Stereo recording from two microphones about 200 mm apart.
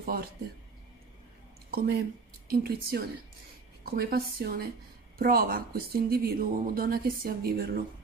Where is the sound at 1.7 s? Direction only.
50° right (ahead or behind).